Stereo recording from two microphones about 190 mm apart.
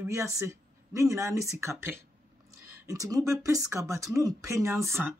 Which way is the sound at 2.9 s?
20° right (ahead or behind).